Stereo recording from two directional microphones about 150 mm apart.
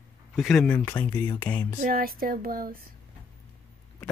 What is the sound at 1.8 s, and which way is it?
Speech, 80° right.